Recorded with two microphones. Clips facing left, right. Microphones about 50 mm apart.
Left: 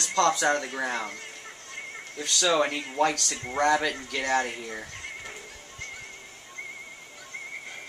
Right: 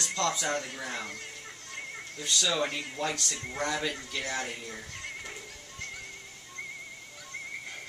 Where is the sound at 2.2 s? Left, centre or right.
Left.